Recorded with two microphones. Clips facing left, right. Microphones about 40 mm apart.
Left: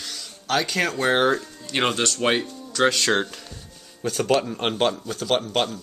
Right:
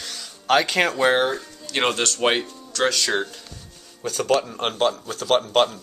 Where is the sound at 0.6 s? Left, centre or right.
Right.